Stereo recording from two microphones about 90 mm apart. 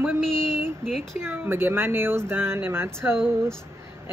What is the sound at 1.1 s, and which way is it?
Speech, 25° right (ahead or behind).